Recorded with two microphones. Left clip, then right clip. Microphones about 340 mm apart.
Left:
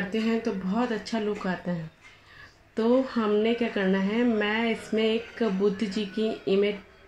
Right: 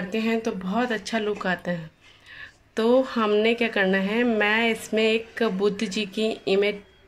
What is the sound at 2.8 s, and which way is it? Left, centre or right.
Speech, right.